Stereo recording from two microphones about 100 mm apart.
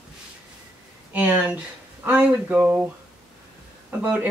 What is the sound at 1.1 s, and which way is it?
Speech, 15° right (ahead or behind).